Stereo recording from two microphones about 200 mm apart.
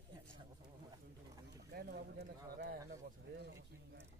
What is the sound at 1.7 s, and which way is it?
Speech, 50° right (ahead or behind).